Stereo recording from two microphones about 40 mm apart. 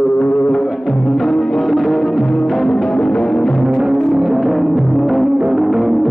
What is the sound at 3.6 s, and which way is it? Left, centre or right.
Music, centre.